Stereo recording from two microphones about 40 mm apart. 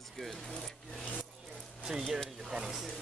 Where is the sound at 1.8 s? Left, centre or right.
Centre.